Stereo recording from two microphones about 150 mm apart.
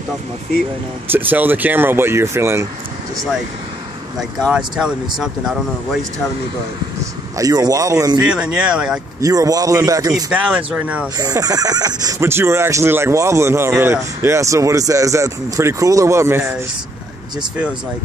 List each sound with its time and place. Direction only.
1.1 s speech: 10° right (ahead or behind)
4.5 s speech: 5° right (ahead or behind)
7.3 s speech: 25° right (ahead or behind)
8.2 s speech: 5° right (ahead or behind)
9.2 s speech: 25° right (ahead or behind)
10.3 s speech: 10° right (ahead or behind)
11.1 s speech: 25° right (ahead or behind)